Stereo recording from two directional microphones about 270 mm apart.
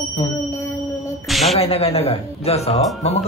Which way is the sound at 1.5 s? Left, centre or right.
Left.